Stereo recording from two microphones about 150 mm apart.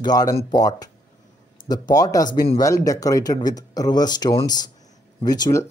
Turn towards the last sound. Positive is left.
turn(degrees=20)  # may be behind; listen again after turning